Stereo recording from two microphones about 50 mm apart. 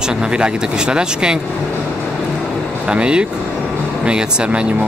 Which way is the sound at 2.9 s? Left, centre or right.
Right.